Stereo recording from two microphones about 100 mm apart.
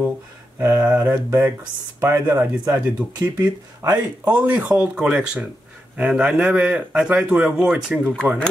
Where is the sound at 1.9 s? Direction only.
25° right (ahead or behind).